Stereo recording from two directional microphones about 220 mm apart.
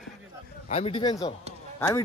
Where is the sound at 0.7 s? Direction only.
25° left (ahead or behind).